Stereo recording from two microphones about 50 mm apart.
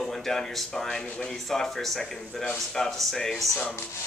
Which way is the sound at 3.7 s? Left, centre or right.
Left.